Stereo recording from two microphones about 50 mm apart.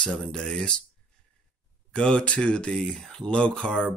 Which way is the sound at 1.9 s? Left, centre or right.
Centre.